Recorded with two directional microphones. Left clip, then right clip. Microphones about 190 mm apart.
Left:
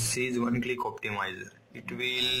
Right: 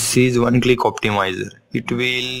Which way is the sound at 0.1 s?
45° right (ahead or behind).